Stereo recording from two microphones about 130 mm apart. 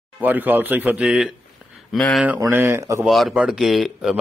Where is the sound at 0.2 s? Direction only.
15° right (ahead or behind); by 2.2 s 5° left (ahead or behind).